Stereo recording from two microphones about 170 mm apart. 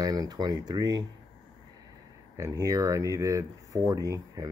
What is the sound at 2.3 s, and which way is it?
Speech, 15° right (ahead or behind).